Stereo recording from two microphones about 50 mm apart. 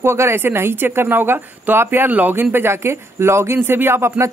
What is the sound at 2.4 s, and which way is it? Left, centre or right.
Speech, right.